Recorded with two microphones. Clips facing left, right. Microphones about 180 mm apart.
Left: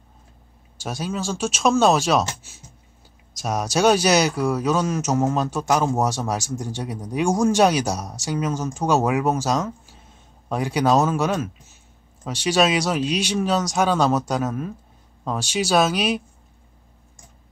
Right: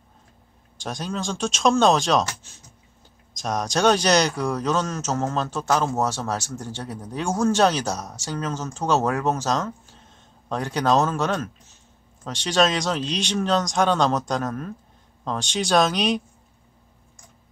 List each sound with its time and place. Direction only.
0.7 s speech: 5° left (ahead or behind)